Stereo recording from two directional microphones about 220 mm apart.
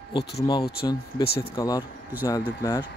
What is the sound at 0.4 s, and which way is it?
Speech, 20° left (ahead or behind).